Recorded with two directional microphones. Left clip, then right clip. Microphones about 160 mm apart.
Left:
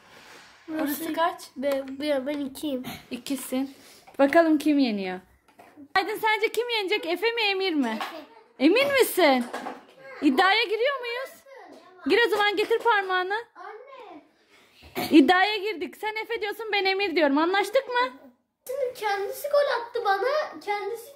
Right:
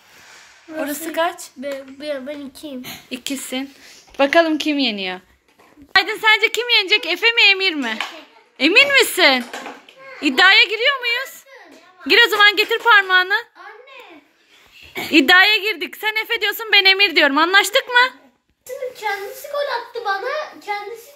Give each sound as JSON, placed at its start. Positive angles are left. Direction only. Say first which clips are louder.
{"t": 1.0, "sound": "a woman's voice", "louder": "right 6 dB", "side_deg": -20}
{"t": 1.6, "sound": "speech", "louder": "left 3 dB", "side_deg": 90}
{"t": 3.1, "sound": "a woman's voice", "louder": "right 6 dB", "side_deg": 0}
{"t": 15.0, "sound": "a woman's voice", "louder": "right 7 dB", "side_deg": 15}
{"t": 18.9, "sound": "a child's voice", "louder": "right 3 dB", "side_deg": 30}